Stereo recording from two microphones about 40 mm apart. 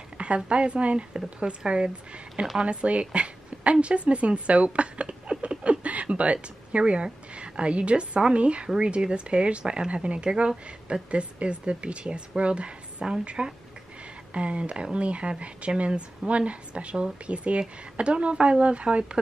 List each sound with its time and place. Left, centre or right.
0.5 s speech: right
5.4 s a sound: right
8.6 s speech: right